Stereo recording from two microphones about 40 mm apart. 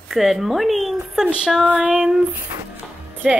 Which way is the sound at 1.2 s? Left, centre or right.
Right.